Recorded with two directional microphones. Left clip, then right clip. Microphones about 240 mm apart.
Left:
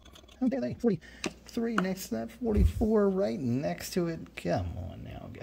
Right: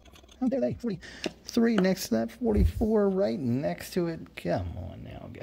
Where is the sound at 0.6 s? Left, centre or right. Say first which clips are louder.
Right 6 dB; centre.